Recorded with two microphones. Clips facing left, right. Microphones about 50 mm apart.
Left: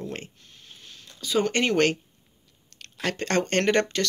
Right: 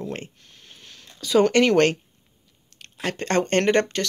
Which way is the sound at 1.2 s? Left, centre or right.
Right.